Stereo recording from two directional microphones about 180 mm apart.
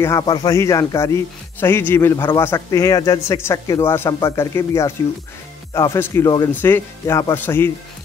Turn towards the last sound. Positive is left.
turn(degrees=10)  # may be behind; listen again after turning